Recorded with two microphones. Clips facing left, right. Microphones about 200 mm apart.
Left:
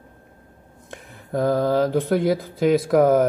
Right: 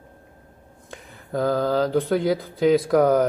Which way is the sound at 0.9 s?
5° left (ahead or behind).